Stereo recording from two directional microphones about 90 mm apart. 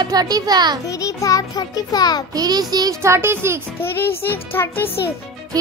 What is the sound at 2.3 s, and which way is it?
Speech, 45° right (ahead or behind).